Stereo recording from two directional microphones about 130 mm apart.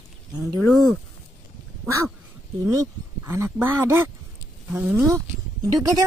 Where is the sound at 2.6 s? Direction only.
20° right (ahead or behind).